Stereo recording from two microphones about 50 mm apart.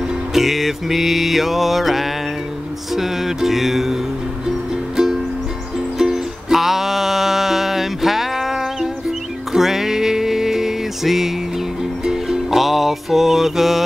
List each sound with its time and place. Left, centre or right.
0.3 s mantra: centre
5.9 s music: centre